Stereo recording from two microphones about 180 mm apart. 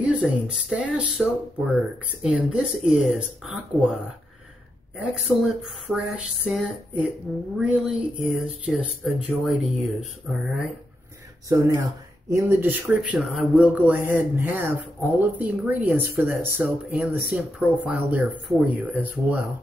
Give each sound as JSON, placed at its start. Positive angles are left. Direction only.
{"t": 0.0, "sound": "speech", "side_deg": -5}
{"t": 5.4, "sound": "speech", "side_deg": -5}
{"t": 11.4, "sound": "speech", "side_deg": -15}